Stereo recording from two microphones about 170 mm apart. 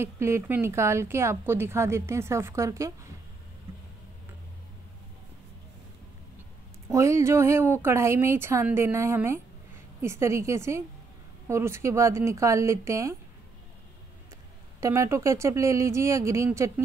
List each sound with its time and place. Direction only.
0.0 s speech: 15° right (ahead or behind)
6.9 s speech: 15° right (ahead or behind)
14.8 s speech: 15° right (ahead or behind)